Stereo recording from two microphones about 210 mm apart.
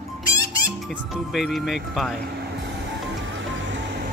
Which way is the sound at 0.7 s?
5° right (ahead or behind).